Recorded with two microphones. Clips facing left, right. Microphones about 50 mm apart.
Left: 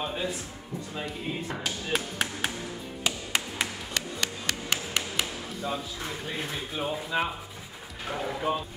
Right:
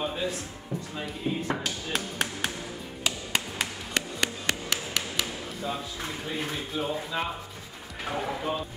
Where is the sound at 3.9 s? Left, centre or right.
Right.